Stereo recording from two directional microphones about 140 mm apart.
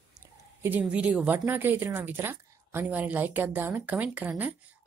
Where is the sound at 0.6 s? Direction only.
10° right (ahead or behind).